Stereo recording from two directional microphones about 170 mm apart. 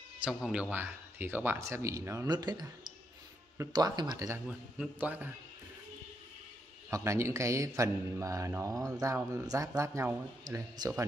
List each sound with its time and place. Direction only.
0.2 s a man's voice: 5° right (ahead or behind); by 4.4 s 20° right (ahead or behind)
4.5 s a man's voice: 5° right (ahead or behind)
6.9 s a man's voice: 15° right (ahead or behind)